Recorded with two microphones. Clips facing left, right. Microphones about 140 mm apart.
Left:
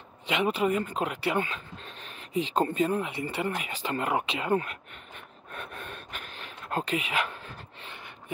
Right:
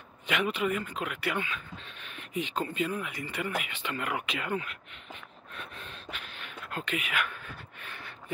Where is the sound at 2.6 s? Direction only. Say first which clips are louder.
Left 6 dB; 40° left (ahead or behind).